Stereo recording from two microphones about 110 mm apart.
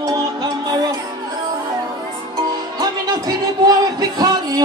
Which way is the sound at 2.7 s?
35° right (ahead or behind).